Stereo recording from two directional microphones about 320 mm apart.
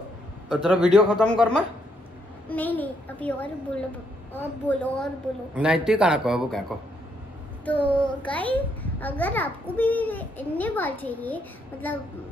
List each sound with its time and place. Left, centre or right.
0.5 s a child's voice: centre
2.5 s a child's voice: centre
7.6 s a child's voice: centre